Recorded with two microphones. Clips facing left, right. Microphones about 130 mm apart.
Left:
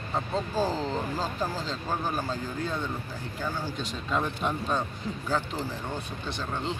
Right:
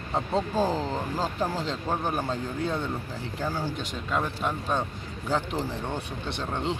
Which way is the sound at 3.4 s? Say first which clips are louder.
Right 2 dB; 30° right (ahead or behind).